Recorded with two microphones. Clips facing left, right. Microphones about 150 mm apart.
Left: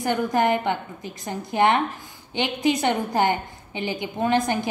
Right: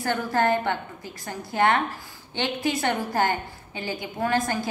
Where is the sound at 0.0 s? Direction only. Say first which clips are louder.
Left 2 dB; 15° left (ahead or behind).